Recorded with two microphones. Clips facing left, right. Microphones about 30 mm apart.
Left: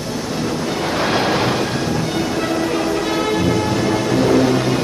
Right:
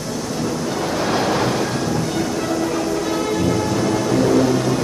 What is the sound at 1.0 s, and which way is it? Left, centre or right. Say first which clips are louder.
Waves: left 2 dB; left.